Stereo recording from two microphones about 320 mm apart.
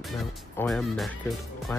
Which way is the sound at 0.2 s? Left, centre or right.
Centre.